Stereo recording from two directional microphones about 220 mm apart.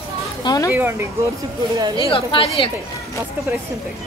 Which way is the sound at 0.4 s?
15° left (ahead or behind).